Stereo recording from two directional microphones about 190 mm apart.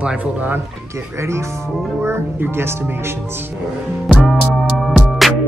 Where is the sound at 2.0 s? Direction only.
10° right (ahead or behind).